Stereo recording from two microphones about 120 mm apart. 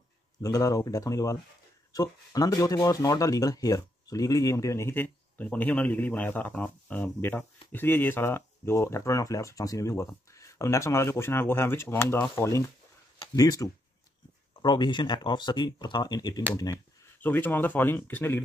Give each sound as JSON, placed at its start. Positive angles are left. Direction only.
{"t": 0.4, "sound": "speech", "side_deg": 30}
{"t": 17.2, "sound": "speech", "side_deg": 15}